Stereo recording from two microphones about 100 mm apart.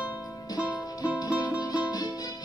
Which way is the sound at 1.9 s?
40° left (ahead or behind).